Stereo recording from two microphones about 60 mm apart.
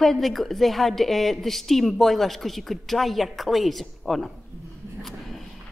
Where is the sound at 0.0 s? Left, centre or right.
Centre.